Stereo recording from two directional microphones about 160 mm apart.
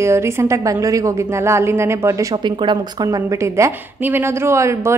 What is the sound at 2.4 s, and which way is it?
A woman's voice, 30° right (ahead or behind).